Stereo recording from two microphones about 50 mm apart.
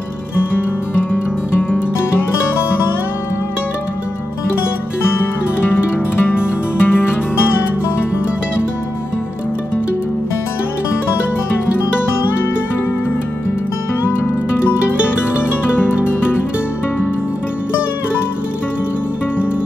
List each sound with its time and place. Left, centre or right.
1.1 s music: left
6.2 s music: left
15.8 s music: left